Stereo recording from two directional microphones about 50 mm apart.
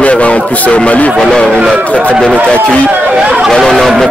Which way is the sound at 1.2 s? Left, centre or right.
Centre.